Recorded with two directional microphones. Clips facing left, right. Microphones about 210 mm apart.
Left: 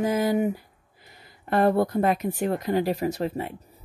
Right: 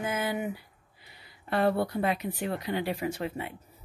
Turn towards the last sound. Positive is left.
turn(degrees=40)  # may be behind; listen again after turning